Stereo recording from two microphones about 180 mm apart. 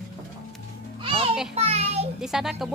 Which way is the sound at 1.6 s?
35° right (ahead or behind).